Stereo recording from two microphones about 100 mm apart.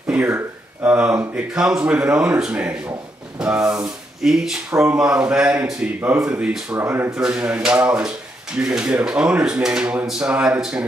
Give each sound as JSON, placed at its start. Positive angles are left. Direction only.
{"t": 0.8, "sound": "speech", "side_deg": -10}
{"t": 6.8, "sound": "speech", "side_deg": -20}
{"t": 7.2, "sound": "speech", "side_deg": -10}